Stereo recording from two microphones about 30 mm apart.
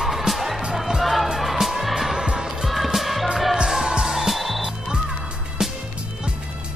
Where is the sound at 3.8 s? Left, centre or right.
Centre.